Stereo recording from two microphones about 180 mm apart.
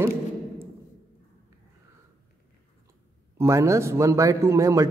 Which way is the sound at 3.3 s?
15° right (ahead or behind).